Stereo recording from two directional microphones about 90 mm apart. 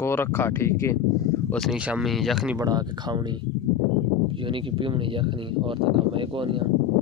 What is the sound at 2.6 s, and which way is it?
Speech, 50° right (ahead or behind).